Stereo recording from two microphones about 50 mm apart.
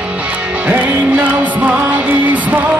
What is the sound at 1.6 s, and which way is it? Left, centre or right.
Music, right.